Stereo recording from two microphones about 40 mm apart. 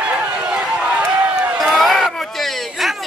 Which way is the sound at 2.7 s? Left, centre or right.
Centre.